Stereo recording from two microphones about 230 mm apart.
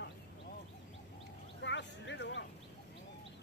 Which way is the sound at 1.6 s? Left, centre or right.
Left.